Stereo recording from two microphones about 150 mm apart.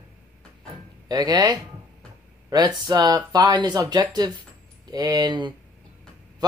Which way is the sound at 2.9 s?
30° right (ahead or behind).